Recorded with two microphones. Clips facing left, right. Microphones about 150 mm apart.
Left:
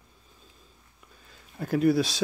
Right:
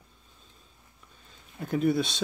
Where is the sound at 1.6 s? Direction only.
Centre (ahead or behind).